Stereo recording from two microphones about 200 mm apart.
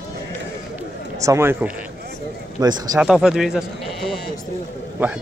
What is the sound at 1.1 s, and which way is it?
Speech, 15° right (ahead or behind).